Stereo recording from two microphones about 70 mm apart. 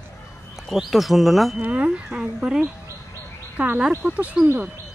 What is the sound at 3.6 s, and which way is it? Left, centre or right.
Speech, right.